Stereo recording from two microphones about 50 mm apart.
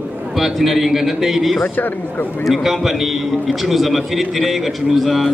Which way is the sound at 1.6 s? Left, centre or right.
Left.